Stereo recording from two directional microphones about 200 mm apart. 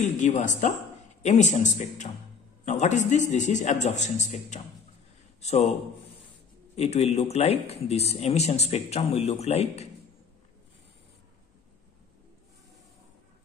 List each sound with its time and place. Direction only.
0.0 s a man's voice: 40° left (ahead or behind)
6.7 s speech: 35° left (ahead or behind)